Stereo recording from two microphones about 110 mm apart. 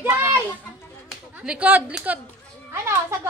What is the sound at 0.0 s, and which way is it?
Children playing, 20° right (ahead or behind).